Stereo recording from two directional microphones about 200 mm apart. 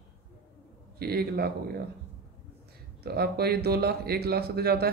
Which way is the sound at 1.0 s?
50° right (ahead or behind).